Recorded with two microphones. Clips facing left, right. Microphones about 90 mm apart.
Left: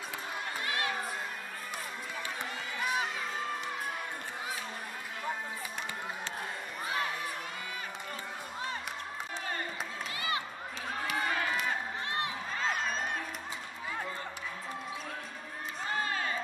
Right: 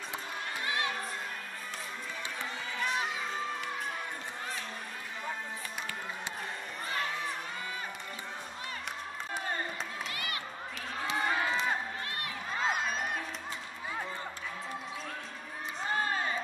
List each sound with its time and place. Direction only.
2.8 s crowd: 10° left (ahead or behind)
10.1 s crowd: 25° left (ahead or behind)
11.1 s run: 25° right (ahead or behind)
12.5 s crowd: 5° right (ahead or behind)
15.9 s crowd: 25° right (ahead or behind)